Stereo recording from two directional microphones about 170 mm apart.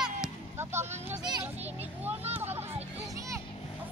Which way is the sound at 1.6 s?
40° right (ahead or behind).